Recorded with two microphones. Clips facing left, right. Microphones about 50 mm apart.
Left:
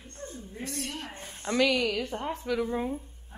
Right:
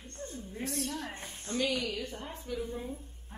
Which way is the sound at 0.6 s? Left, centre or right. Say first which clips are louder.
Right 1 dB; left.